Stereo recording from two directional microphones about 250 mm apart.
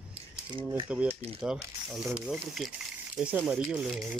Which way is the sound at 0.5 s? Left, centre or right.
Right.